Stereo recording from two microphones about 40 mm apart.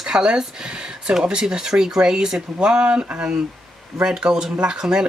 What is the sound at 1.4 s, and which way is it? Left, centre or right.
Speech, centre.